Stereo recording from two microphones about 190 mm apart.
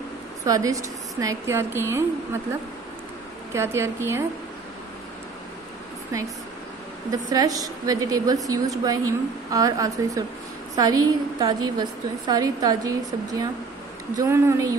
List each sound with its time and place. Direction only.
0.5 s a woman's voice: 15° right (ahead or behind)
3.5 s a woman's voice: 15° right (ahead or behind)
7.1 s a woman's voice: 20° right (ahead or behind)